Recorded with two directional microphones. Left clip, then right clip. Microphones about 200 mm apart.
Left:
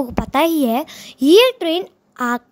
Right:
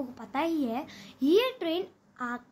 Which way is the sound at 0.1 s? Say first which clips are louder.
Left 14 dB; 55° left (ahead or behind).